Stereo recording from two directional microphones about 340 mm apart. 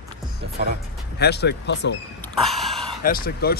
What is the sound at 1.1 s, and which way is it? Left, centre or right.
Speech, left.